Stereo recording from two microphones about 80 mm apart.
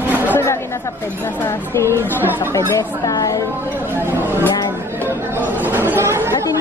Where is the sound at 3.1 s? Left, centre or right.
Left.